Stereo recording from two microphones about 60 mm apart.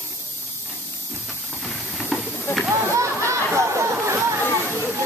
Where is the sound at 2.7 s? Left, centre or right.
Right.